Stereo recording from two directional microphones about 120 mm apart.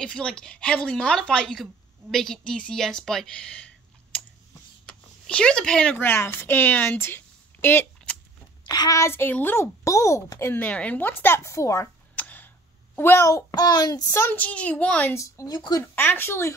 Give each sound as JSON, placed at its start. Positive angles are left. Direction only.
{"t": 0.0, "sound": "a woman's voice", "side_deg": 5}
{"t": 8.6, "sound": "a child's voice", "side_deg": 35}
{"t": 10.6, "sound": "a woman's voice", "side_deg": 10}
{"t": 12.2, "sound": "tick", "side_deg": 15}
{"t": 12.9, "sound": "a child's voice", "side_deg": 20}
{"t": 15.1, "sound": "speech", "side_deg": 25}
{"t": 15.8, "sound": "a child's voice", "side_deg": 15}